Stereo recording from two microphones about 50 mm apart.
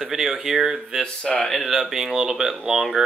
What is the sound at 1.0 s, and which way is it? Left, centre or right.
Speech, centre.